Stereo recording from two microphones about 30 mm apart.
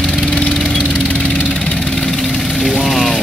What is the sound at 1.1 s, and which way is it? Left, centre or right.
Engine, left.